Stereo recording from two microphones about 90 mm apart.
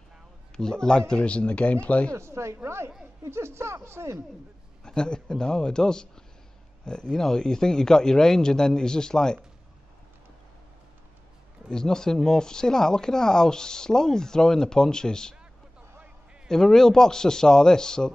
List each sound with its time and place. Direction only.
0.6 s speech: 5° left (ahead or behind)
2.1 s speech: 30° right (ahead or behind)
4.8 s speech: 10° left (ahead or behind)
11.7 s speech: 5° left (ahead or behind)
16.4 s speech: 5° left (ahead or behind)